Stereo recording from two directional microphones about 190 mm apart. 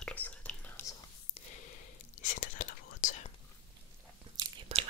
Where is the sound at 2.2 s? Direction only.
45° left (ahead or behind).